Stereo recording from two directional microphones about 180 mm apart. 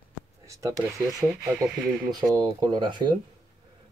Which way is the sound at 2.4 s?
25° right (ahead or behind).